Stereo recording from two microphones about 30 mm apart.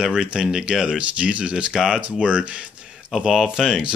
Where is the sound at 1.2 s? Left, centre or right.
Right.